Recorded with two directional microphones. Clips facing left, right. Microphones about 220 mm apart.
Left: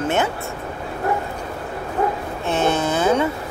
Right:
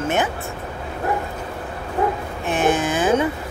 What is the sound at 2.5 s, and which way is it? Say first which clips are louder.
Speech: even; 15° right (ahead or behind).